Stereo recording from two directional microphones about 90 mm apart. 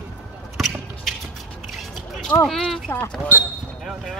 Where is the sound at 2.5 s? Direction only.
5° left (ahead or behind).